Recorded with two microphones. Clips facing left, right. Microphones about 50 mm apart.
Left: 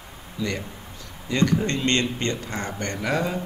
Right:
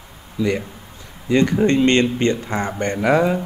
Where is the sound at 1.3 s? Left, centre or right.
Right.